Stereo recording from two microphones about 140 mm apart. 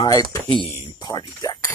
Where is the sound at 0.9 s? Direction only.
30° left (ahead or behind).